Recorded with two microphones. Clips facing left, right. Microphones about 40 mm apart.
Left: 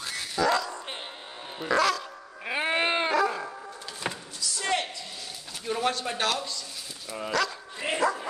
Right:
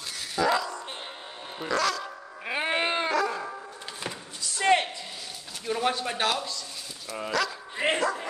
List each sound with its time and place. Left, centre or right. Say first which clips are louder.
0.4 s dog: even; centre
1.7 s dog: left 3 dB; centre
2.8 s dog: left 3 dB; centre
4.4 s slam: right 6 dB; right
5.7 s a sound: right 1 dB; centre
7.2 s dog: even; centre
7.8 s dog: right 5 dB; right